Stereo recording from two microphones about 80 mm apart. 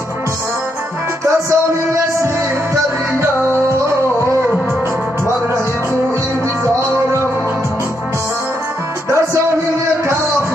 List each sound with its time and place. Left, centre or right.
1.2 s music: right
6.6 s music: right
9.1 s music: right